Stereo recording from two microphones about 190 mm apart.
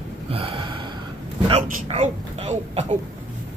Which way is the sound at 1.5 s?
35° right (ahead or behind).